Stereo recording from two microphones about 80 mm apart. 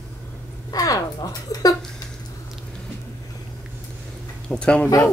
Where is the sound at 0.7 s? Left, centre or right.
Left.